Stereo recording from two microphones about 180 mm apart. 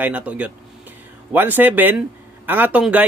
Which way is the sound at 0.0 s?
10° right (ahead or behind).